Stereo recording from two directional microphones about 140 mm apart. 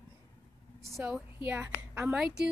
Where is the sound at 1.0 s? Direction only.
10° right (ahead or behind).